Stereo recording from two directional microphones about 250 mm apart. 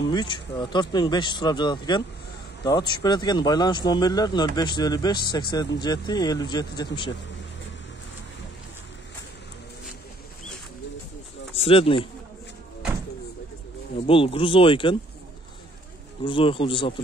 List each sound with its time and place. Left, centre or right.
0.0 s speech: centre
11.5 s speech: left
14.0 s speech: left
16.3 s speech: left